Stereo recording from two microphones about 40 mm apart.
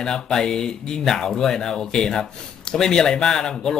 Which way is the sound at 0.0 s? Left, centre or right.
Centre.